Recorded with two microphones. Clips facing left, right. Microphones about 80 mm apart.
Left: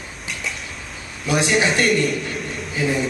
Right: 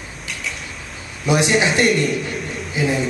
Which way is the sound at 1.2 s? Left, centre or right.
Centre.